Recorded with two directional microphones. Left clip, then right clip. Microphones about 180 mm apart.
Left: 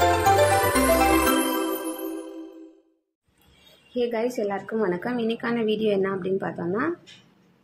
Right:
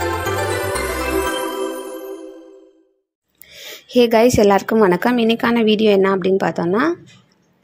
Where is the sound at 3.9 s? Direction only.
55° right (ahead or behind).